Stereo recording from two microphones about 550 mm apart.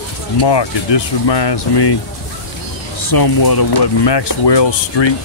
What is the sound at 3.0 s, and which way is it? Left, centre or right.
Speech, left.